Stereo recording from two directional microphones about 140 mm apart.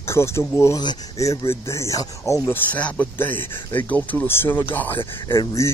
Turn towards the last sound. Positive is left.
turn(degrees=25)  # may be behind; listen again after turning